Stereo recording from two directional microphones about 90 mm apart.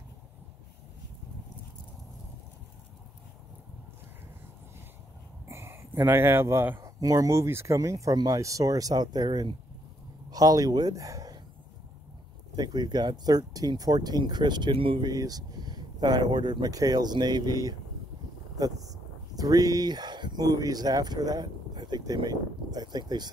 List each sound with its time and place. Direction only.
5.5 s speech: 25° right (ahead or behind)
6.8 s speech: 40° right (ahead or behind)
12.5 s speech: 50° right (ahead or behind); by 15.0 s 75° right (ahead or behind)
15.0 s speech: 45° right (ahead or behind)
16.7 s speech: 45° right (ahead or behind)